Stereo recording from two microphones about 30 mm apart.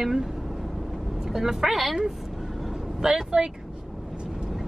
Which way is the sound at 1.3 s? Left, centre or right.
Centre.